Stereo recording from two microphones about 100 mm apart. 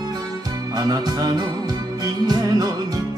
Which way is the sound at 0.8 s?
40° right (ahead or behind).